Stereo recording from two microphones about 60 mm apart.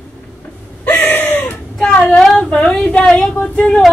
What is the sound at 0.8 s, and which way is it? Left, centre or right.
Gasp, left.